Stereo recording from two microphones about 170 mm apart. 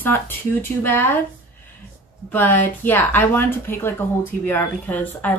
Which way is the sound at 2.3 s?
10° left (ahead or behind).